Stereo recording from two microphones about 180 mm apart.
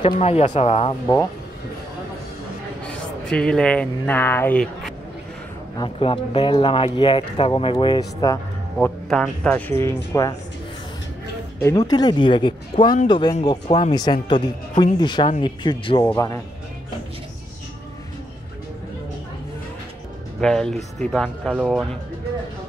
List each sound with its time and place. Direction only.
0.2 s speech: 35° left (ahead or behind)
2.8 s speech: 5° left (ahead or behind)
5.8 s speech: 30° left (ahead or behind)
8.7 s speech: 5° left (ahead or behind)
11.6 s speech: 20° left (ahead or behind)
16.1 s speech: 20° left (ahead or behind)
20.3 s speech: 5° left (ahead or behind)